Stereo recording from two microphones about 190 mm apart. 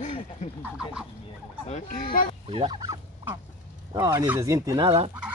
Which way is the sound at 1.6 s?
40° left (ahead or behind).